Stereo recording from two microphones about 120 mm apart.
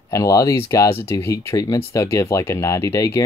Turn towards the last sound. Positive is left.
turn(degrees=25)  # may be behind; listen again after turning